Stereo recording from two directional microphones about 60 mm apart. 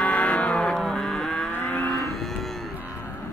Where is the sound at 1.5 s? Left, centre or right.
Left.